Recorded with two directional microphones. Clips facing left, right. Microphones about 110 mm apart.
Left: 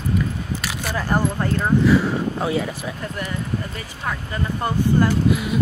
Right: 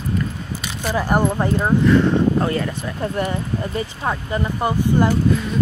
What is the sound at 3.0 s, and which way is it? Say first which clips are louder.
Speech: right 6 dB; 30° right (ahead or behind).